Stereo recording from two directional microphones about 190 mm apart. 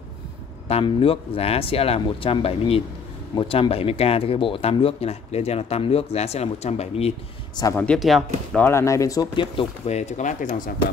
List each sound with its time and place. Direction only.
0.7 s speech: 30° left (ahead or behind)
7.7 s speech: 5° left (ahead or behind)
8.6 s speech: 15° left (ahead or behind); by 10.7 s 40° left (ahead or behind)